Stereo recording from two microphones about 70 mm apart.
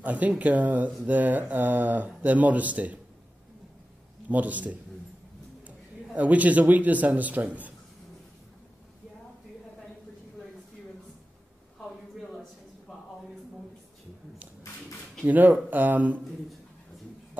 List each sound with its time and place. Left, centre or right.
0.0 s speech: right
4.3 s speech: right
6.1 s speech: right
12.2 s a sound: centre
15.2 s speech: right